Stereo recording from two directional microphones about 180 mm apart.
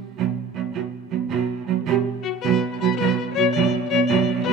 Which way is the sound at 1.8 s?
Centre (ahead or behind).